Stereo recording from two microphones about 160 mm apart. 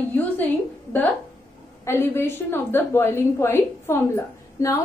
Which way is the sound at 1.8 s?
15° left (ahead or behind).